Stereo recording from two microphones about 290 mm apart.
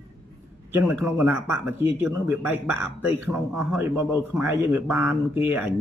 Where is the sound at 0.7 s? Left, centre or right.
Centre.